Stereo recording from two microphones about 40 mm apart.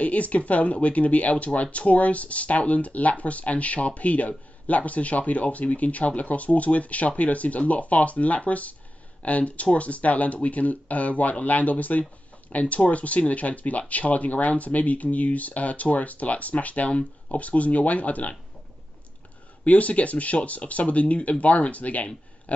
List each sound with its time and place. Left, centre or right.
0.0 s speech: left
19.6 s speech: left